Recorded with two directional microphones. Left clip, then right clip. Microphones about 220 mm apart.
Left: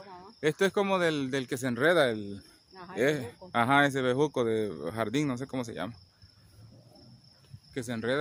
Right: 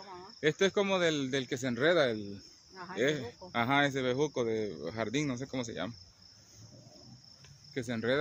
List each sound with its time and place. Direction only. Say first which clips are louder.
0.4 s speech: left 2 dB; 20° left (ahead or behind)
7.7 s speech: left 1 dB; 10° left (ahead or behind)